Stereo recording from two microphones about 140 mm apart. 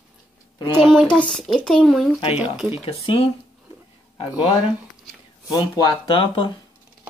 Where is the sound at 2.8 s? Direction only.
40° left (ahead or behind).